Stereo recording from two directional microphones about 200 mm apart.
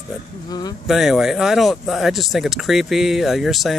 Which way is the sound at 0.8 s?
Centre (ahead or behind).